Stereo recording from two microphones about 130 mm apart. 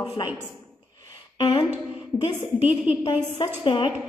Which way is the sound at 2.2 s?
50° left (ahead or behind).